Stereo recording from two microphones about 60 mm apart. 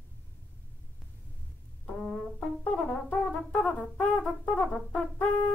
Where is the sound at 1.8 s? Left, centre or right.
Centre.